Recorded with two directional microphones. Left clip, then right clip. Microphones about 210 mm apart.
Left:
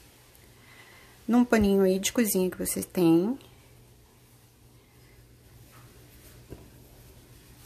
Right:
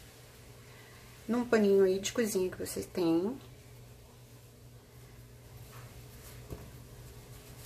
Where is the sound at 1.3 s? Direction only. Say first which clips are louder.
Left 4 dB; 45° left (ahead or behind).